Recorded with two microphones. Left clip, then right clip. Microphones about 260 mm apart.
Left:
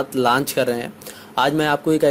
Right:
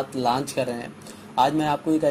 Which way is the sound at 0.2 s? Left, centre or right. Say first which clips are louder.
Left 6 dB; left.